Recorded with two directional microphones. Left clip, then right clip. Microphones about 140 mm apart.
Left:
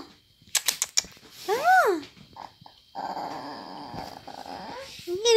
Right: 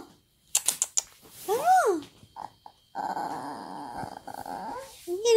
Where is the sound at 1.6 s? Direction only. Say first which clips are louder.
Left 2 dB; 5° right (ahead or behind).